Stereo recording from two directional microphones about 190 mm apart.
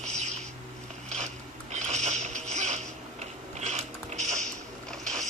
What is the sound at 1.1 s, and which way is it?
Music, 40° right (ahead or behind).